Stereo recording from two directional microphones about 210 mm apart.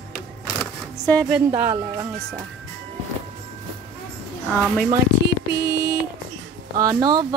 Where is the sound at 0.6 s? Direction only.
10° left (ahead or behind).